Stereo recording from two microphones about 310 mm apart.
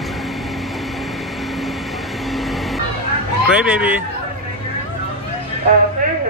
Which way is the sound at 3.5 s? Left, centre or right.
Centre.